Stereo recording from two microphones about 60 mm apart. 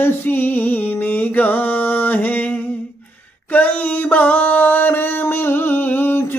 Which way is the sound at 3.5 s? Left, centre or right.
Left.